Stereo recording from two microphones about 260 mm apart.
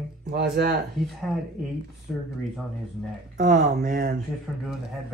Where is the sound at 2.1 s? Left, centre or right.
Centre.